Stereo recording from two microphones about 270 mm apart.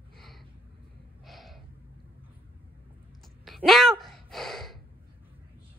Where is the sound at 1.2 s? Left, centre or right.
Centre.